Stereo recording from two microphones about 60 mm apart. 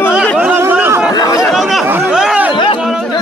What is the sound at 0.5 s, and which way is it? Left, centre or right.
Chatter, right.